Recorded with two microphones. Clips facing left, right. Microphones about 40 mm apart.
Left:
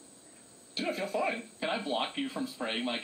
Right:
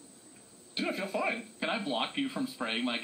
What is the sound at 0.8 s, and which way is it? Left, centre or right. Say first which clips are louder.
Speech: left 1 dB; centre.